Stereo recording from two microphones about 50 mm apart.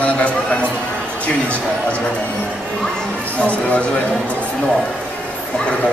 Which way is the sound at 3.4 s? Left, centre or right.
Left.